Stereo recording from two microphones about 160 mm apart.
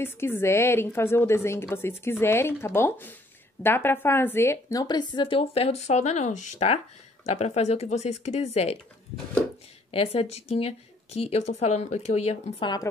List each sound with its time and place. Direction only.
0.0 s a woman's voice: 15° left (ahead or behind); by 8.7 s 45° left (ahead or behind)
9.8 s speech: 35° left (ahead or behind)